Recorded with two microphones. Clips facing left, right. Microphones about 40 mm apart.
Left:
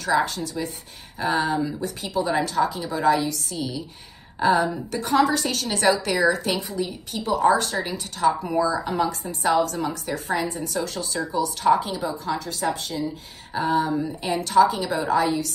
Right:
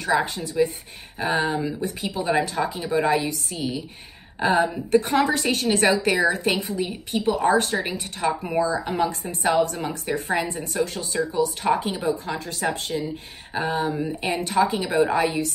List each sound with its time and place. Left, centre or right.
0.0 s speech: right
2.0 s a woman's voice: centre
5.9 s a woman's voice: centre
6.2 s speech: right
12.9 s speech: right